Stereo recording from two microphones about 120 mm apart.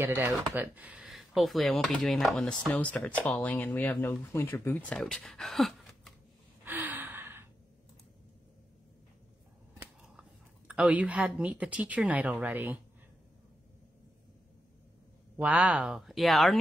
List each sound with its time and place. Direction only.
0.0 s speech: 20° right (ahead or behind); by 4.1 s 15° left (ahead or behind)
4.1 s speech: 25° left (ahead or behind)
4.9 s speech: centre (ahead or behind)
6.6 s gasp: 15° right (ahead or behind)
10.7 s a woman's voice: 10° right (ahead or behind)
15.4 s speech: 10° right (ahead or behind)